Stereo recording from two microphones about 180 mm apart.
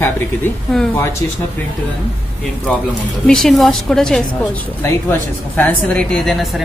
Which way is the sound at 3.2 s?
Centre (ahead or behind).